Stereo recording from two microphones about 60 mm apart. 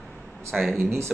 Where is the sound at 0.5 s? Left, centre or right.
Centre.